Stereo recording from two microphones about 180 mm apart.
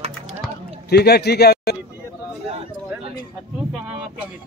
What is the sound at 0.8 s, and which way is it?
Speech, 60° left (ahead or behind).